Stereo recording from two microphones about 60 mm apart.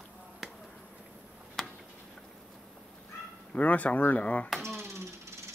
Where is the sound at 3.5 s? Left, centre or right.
Left.